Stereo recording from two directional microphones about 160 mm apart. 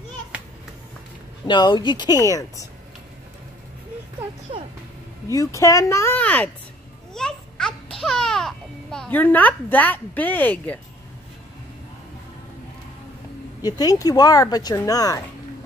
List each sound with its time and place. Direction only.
1.5 s speech: 30° left (ahead or behind)
5.3 s speech: 20° left (ahead or behind)
7.2 s babbling: 5° left (ahead or behind)
8.0 s speech: centre (ahead or behind)
13.6 s speech: 25° left (ahead or behind)